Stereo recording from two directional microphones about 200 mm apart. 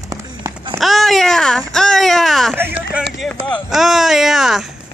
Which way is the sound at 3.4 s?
Centre (ahead or behind).